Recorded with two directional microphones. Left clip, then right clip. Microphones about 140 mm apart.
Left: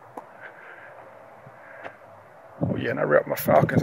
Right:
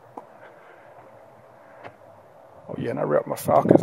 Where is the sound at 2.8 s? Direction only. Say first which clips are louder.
Left 2 dB; 25° right (ahead or behind).